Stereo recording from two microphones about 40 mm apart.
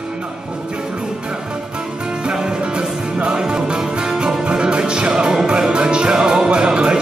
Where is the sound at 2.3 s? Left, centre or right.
Right.